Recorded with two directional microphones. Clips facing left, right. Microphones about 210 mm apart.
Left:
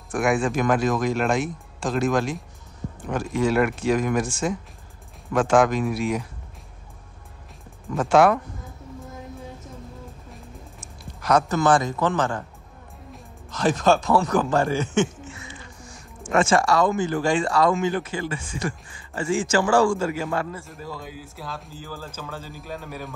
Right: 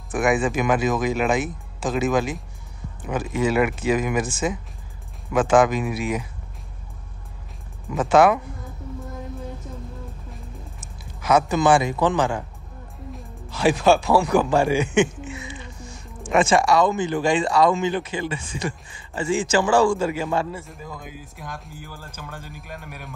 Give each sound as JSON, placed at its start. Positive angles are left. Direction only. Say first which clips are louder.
{"t": 0.1, "sound": "speech", "louder": "right 1 dB", "side_deg": 0}
{"t": 7.9, "sound": "speech", "louder": "right 1 dB", "side_deg": 0}
{"t": 10.3, "sound": "a sound", "louder": "right 2 dB", "side_deg": 0}
{"t": 13.1, "sound": "speech", "louder": "right 1 dB", "side_deg": -5}
{"t": 20.6, "sound": "speech", "louder": "left 1 dB", "side_deg": 0}
{"t": 20.9, "sound": "speech", "louder": "left 2 dB", "side_deg": -15}